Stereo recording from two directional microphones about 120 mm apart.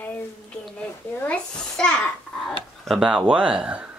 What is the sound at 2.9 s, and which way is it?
Speech, 5° right (ahead or behind).